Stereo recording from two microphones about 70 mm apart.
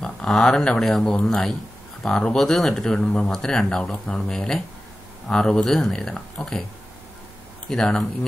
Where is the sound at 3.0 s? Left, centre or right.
Left.